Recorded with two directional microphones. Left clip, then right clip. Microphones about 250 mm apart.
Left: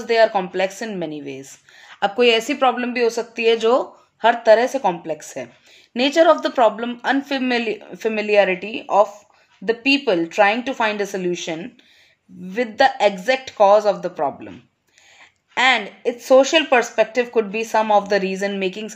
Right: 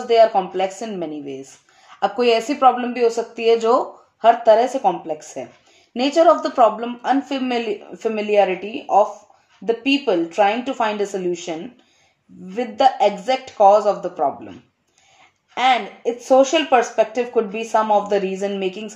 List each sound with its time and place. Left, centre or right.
0.0 s a woman's voice: left
12.5 s speech: left
15.5 s speech: left